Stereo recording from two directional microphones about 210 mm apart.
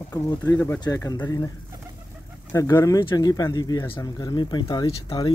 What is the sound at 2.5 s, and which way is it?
Speech, 15° left (ahead or behind).